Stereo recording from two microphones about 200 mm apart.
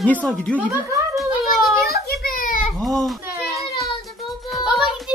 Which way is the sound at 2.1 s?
45° left (ahead or behind).